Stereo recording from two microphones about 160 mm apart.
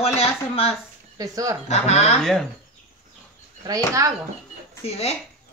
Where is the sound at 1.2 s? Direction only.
20° right (ahead or behind).